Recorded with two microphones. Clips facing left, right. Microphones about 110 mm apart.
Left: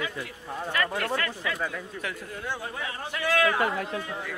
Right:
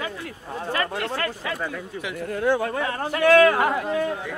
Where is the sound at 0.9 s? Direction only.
25° right (ahead or behind).